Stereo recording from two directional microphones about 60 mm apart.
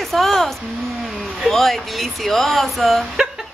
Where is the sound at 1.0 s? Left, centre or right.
Centre.